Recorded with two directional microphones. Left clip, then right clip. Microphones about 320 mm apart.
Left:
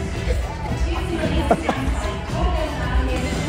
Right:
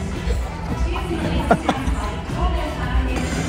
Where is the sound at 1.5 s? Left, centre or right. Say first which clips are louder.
Right 2 dB; right.